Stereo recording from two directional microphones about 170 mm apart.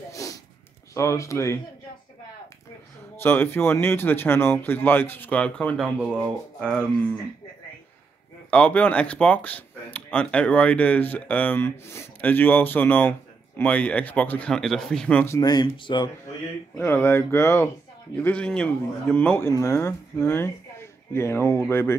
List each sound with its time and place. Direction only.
0.1 s sniff: 20° left (ahead or behind)
0.9 s speech: 20° left (ahead or behind)
3.2 s speech: 15° left (ahead or behind)
8.5 s speech: 5° left (ahead or behind)
15.3 s speech: 25° left (ahead or behind)
16.7 s speech: 15° left (ahead or behind)